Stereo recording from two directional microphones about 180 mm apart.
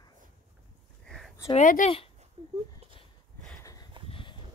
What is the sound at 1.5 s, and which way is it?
Speech, 45° left (ahead or behind).